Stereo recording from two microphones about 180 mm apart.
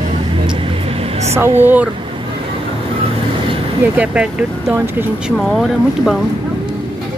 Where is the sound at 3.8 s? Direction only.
10° right (ahead or behind).